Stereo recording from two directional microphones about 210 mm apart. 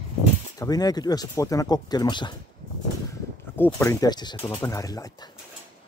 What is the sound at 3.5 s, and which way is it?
Speech, 10° left (ahead or behind).